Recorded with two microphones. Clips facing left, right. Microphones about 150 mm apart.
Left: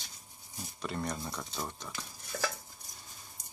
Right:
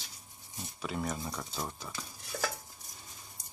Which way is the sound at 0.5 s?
Centre (ahead or behind).